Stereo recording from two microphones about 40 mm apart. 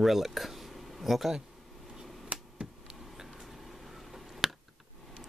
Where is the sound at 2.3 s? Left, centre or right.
Right.